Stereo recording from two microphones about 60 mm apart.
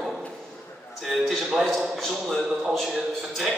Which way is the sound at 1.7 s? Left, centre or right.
Centre.